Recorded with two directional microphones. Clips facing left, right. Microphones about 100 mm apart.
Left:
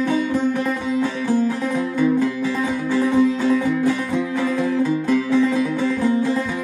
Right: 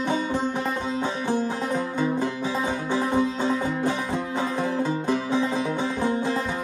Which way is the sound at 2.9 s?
25° right (ahead or behind).